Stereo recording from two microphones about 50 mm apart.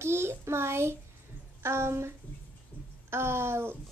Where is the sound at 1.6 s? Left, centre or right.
Right.